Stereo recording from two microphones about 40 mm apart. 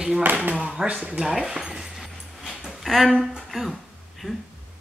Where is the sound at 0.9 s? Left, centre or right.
Right.